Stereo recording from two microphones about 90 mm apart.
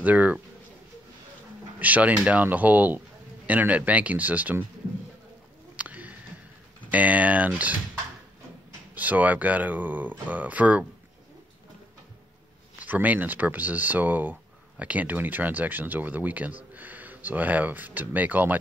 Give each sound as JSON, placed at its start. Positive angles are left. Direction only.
{"t": 0.0, "sound": "speech", "side_deg": -15}
{"t": 1.8, "sound": "speech", "side_deg": -15}
{"t": 5.8, "sound": "a sound", "side_deg": -15}
{"t": 6.9, "sound": "speech", "side_deg": -15}
{"t": 8.9, "sound": "speech", "side_deg": -15}
{"t": 12.7, "sound": "speech", "side_deg": -20}